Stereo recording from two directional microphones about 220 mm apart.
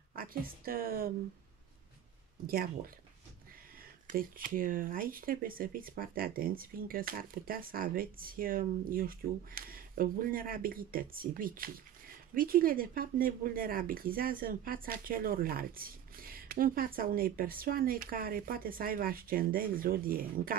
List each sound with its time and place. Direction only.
0.1 s speech: 40° right (ahead or behind)
2.4 s speech: 45° right (ahead or behind)
4.1 s speech: 40° right (ahead or behind)